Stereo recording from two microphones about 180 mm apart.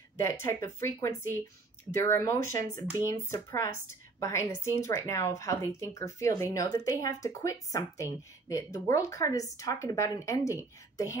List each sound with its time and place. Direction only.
0.2 s a woman's voice: 15° left (ahead or behind)